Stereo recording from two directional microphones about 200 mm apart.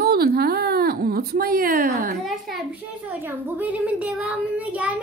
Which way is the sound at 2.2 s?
Centre (ahead or behind).